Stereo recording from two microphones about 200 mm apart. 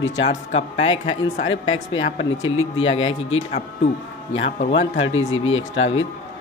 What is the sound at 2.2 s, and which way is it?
Speech, 75° left (ahead or behind).